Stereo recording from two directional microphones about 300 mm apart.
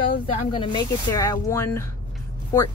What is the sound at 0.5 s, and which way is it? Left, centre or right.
Speech, centre.